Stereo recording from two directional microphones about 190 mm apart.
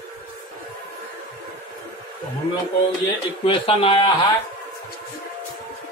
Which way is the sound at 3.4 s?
30° left (ahead or behind).